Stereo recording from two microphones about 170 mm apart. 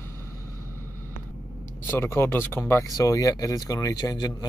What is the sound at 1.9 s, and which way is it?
Speech, 15° left (ahead or behind).